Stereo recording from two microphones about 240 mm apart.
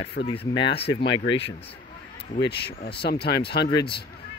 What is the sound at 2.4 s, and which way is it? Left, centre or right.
Speech, left.